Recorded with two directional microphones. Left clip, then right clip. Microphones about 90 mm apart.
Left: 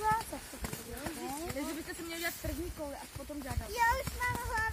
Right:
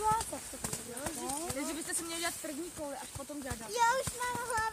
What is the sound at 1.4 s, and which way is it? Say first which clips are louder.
Speech: right 1 dB; 10° right (ahead or behind).